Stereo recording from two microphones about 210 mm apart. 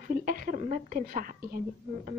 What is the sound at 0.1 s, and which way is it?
A woman's voice, 40° right (ahead or behind).